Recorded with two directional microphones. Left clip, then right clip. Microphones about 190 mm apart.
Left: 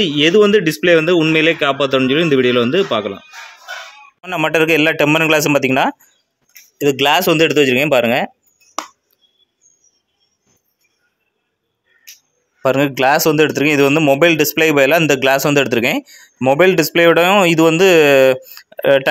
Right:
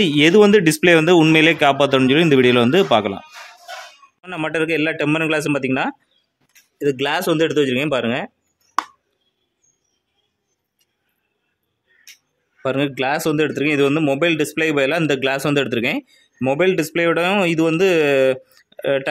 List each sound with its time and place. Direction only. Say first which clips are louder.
0.0 s a man's voice: left 1 dB; 20° right (ahead or behind)
4.2 s speech: left 7 dB; 5° left (ahead or behind)
12.6 s speech: left 7 dB; 5° left (ahead or behind)